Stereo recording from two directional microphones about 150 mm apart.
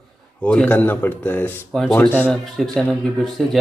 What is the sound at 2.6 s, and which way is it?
Speech, centre (ahead or behind).